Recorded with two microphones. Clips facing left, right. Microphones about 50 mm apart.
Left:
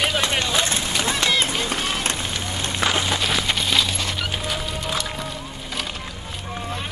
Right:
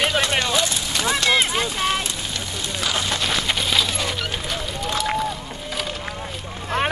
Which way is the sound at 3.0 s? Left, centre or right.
Centre.